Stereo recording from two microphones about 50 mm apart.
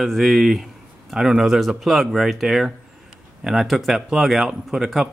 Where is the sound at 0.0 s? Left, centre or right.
Centre.